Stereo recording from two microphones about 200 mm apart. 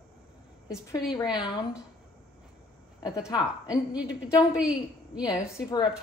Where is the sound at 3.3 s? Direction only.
20° left (ahead or behind).